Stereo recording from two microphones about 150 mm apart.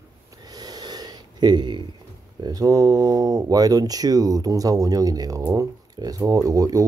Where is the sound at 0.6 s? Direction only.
25° right (ahead or behind).